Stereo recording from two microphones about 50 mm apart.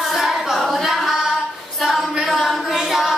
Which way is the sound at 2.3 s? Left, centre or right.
Centre.